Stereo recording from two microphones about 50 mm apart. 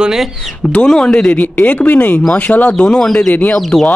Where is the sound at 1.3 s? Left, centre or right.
Left.